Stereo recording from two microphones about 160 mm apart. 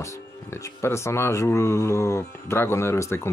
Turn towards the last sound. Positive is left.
turn(degrees=15)  # may be behind; listen again after turning